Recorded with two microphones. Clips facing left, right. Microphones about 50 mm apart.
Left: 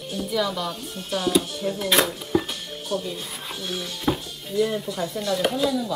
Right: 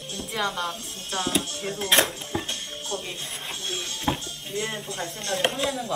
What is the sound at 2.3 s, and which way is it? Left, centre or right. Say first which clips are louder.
Music: left 8 dB; right.